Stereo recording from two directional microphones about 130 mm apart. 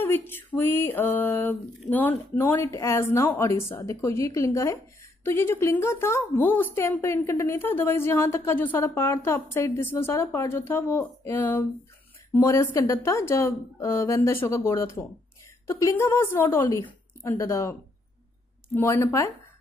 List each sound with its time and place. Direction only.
0.3 s a sound: 15° left (ahead or behind)
5.2 s a woman's voice: 20° left (ahead or behind)
18.8 s a woman's voice: 20° left (ahead or behind)